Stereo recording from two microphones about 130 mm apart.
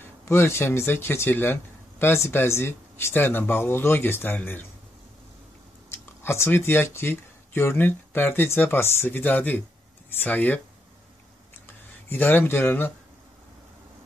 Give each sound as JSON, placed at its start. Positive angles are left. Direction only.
{"t": 0.0, "sound": "speech", "side_deg": 20}
{"t": 6.2, "sound": "speech", "side_deg": 20}
{"t": 11.6, "sound": "speech", "side_deg": 15}